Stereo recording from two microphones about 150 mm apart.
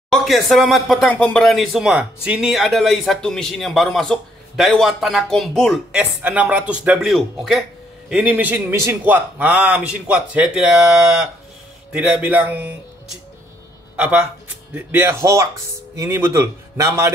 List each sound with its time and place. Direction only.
0.1 s a man's voice: centre (ahead or behind); by 17.1 s 20° right (ahead or behind)